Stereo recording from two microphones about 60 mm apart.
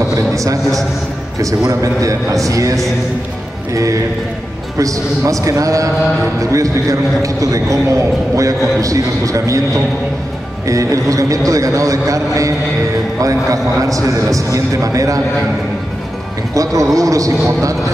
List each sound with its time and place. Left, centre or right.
0.3 s a sound: right
1.7 s a man's voice: right
10.7 s a man's voice: right
16.5 s a man's voice: right